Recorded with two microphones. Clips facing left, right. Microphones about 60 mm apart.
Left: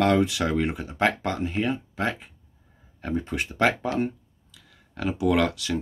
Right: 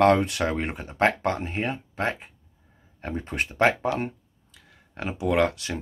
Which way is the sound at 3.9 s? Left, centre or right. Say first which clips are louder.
Left 3 dB; right.